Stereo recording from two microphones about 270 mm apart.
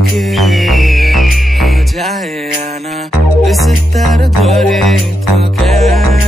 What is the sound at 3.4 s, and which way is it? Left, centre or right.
Music, centre.